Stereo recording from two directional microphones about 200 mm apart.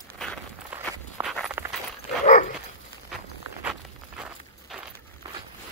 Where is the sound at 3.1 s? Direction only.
5° right (ahead or behind).